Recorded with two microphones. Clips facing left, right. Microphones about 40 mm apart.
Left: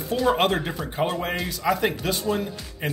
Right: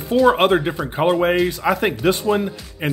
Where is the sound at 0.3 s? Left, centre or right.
Centre.